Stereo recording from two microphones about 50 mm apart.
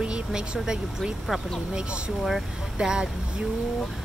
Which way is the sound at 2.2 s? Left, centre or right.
Centre.